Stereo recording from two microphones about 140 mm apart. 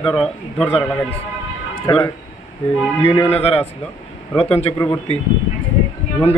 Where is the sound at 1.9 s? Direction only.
30° left (ahead or behind).